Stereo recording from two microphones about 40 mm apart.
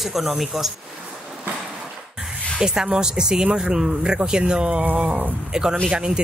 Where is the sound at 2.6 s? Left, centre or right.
Centre.